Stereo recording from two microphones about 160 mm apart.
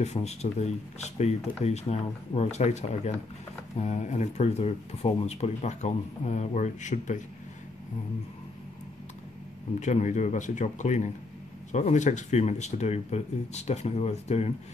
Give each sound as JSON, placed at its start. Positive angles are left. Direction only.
{"t": 0.0, "sound": "speech", "side_deg": 45}
{"t": 9.8, "sound": "speech", "side_deg": 50}